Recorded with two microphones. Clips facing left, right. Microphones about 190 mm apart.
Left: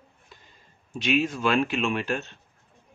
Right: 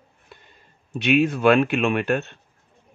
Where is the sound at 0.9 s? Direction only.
60° right (ahead or behind).